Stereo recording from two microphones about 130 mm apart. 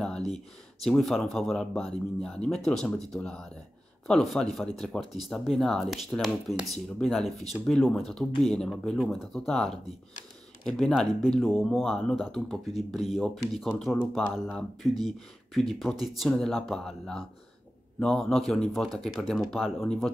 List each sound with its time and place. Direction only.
0.8 s speech: 5° left (ahead or behind)